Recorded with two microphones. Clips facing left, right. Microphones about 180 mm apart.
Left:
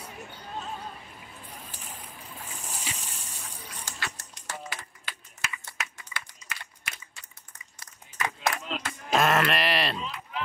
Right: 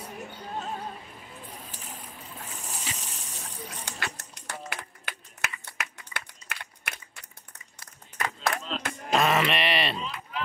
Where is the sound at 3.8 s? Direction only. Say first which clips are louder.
Left 1 dB; 60° right (ahead or behind).